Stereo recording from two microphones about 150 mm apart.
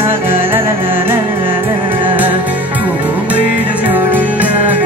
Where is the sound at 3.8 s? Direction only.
10° right (ahead or behind).